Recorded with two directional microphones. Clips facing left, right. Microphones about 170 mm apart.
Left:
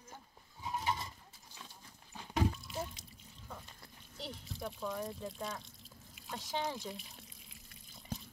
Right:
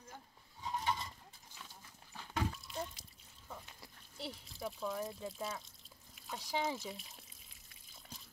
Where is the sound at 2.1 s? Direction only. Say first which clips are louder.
Left 5 dB; 15° left (ahead or behind).